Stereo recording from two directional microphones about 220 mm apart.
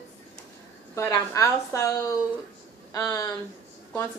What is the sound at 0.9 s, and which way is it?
A woman's voice, 10° left (ahead or behind).